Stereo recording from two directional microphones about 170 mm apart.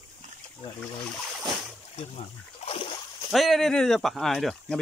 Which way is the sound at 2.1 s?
35° left (ahead or behind).